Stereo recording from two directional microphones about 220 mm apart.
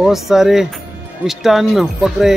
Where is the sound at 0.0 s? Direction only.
Centre (ahead or behind).